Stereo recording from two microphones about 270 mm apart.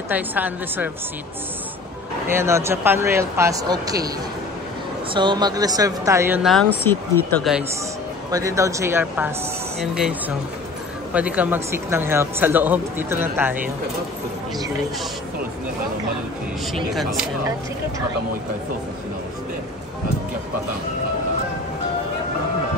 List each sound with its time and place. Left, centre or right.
0.1 s speech: centre
2.2 s speech: centre
5.1 s speech: centre
8.3 s speech: centre
11.1 s speech: centre
16.9 s speech: centre